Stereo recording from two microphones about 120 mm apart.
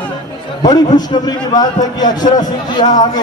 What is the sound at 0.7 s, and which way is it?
A man's voice, 35° left (ahead or behind).